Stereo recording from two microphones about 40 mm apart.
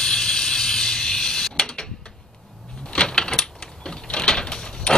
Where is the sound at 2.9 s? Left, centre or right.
Left.